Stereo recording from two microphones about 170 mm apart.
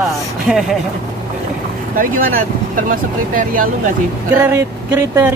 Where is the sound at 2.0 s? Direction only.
55° right (ahead or behind).